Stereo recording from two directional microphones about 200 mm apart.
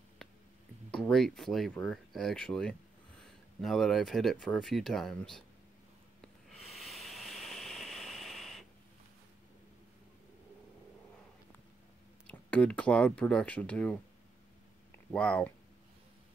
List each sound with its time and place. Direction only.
0.9 s speech: 5° left (ahead or behind)
6.6 s a sound: centre (ahead or behind)
12.3 s speech: 5° left (ahead or behind)
15.1 s speech: 5° left (ahead or behind)